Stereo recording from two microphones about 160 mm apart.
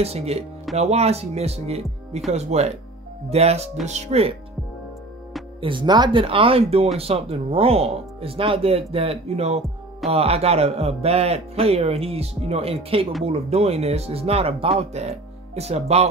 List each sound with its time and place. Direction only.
0.0 s speech: 40° right (ahead or behind)
5.6 s speech: 30° right (ahead or behind)